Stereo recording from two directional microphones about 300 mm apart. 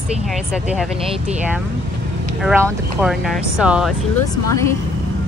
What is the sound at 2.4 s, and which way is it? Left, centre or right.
Speech, centre.